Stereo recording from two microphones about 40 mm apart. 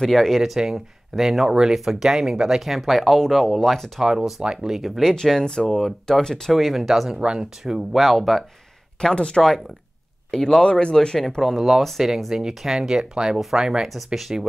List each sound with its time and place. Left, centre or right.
0.0 s speech: centre
0.6 s speech: centre
2.8 s speech: centre
4.0 s speech: centre
5.1 s speech: centre
6.5 s speech: centre
7.2 s speech: right
7.6 s speech: centre
8.0 s speech: centre
9.1 s speech: left
10.5 s speech: left
11.4 s speech: centre
13.4 s speech: centre